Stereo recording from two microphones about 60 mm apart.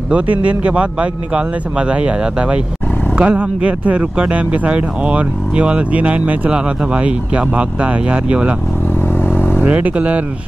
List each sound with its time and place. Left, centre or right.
0.1 s speech: right
9.6 s speech: right